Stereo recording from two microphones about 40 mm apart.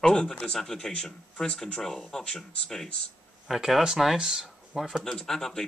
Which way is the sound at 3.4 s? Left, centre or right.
Centre.